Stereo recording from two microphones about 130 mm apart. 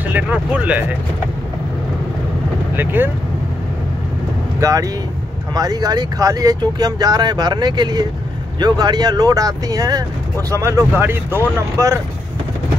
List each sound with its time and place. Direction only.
0.1 s speech: 10° right (ahead or behind)
2.7 s speech: 15° right (ahead or behind)
4.6 s speech: 25° right (ahead or behind)